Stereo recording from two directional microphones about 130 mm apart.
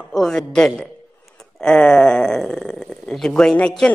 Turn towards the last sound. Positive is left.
turn(degrees=5)  # may be behind; listen again after turning